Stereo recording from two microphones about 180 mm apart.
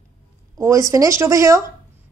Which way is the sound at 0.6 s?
15° right (ahead or behind).